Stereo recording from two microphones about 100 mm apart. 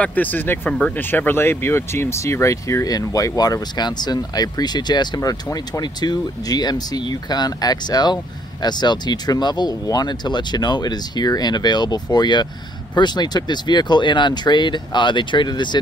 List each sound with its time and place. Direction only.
0.0 s speech: 15° left (ahead or behind); by 15.8 s 50° left (ahead or behind)